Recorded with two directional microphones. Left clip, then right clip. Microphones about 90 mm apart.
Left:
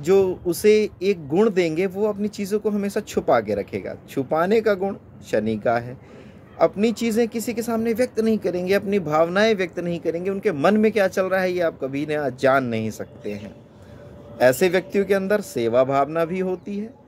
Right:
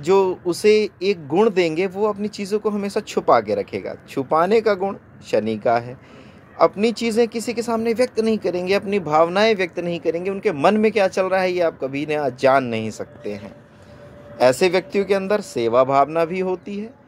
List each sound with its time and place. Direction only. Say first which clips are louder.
0.0 s speech: right 1 dB; 35° left (ahead or behind)
14.4 s speech: right 1 dB; 30° left (ahead or behind)